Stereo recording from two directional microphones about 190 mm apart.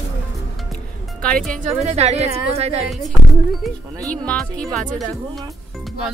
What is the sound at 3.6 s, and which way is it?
Speech, centre (ahead or behind).